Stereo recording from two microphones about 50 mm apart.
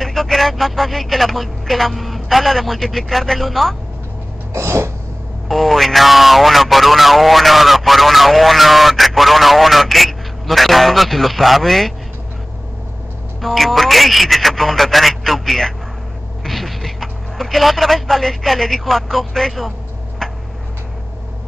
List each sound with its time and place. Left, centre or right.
0.0 s speech: centre
4.6 s a sound: right
5.5 s speech: centre
13.4 s speech: centre